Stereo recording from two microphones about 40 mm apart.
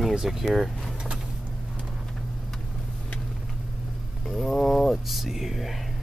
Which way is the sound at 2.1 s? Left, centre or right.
Centre.